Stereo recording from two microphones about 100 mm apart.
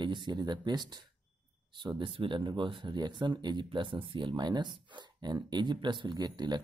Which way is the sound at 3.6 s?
60° right (ahead or behind).